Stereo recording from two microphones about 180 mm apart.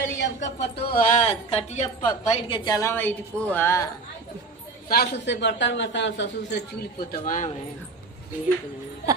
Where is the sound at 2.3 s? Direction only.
30° left (ahead or behind); by 3.8 s 10° left (ahead or behind).